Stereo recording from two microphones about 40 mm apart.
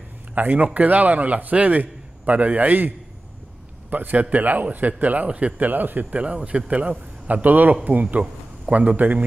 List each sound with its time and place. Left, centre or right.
0.3 s a man's voice: right
3.9 s a man's voice: right
5.7 s a man's voice: right